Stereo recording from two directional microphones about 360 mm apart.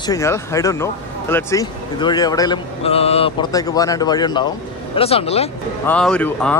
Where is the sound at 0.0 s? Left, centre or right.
Centre.